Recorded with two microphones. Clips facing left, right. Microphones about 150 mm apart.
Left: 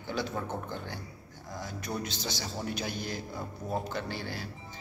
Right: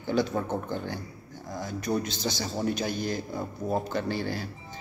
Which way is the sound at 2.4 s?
45° right (ahead or behind).